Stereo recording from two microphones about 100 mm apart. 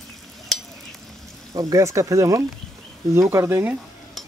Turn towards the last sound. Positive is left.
turn(degrees=-25)  # may be behind; listen again after turning